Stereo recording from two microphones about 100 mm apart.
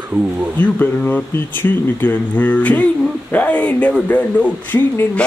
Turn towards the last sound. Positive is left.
turn(degrees=20)  # may be behind; listen again after turning